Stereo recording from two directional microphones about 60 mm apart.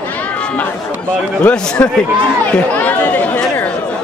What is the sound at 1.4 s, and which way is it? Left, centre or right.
Speech, centre.